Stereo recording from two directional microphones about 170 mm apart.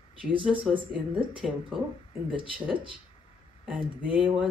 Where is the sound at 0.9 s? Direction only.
5° right (ahead or behind).